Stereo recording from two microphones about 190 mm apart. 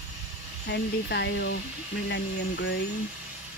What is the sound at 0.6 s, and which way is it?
Speech, 60° left (ahead or behind).